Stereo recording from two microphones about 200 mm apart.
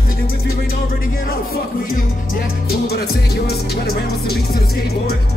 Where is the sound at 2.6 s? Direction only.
50° left (ahead or behind).